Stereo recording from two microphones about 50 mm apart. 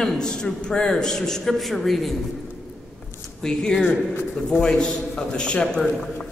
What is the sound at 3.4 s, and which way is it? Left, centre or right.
A man's voice, centre.